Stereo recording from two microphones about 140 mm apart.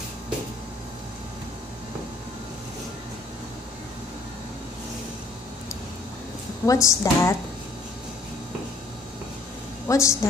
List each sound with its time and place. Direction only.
6.6 s a woman's voice: 20° left (ahead or behind)
9.8 s a woman's voice: 20° left (ahead or behind)